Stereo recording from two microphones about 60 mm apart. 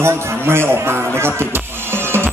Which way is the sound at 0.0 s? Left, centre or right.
Right.